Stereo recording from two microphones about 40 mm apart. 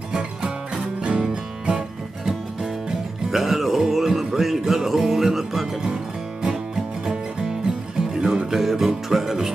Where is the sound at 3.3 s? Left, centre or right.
Centre.